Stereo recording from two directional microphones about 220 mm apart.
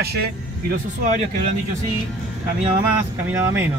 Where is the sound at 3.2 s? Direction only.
10° right (ahead or behind).